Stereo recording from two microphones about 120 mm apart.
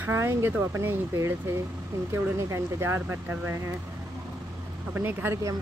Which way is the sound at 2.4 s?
20° right (ahead or behind).